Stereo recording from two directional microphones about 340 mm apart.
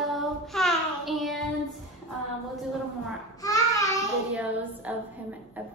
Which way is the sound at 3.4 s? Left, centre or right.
Centre.